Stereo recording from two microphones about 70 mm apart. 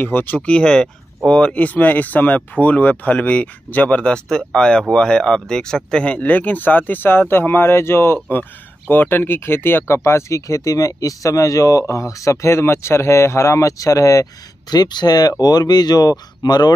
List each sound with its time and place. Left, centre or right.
0.0 s speech: left
14.7 s speech: left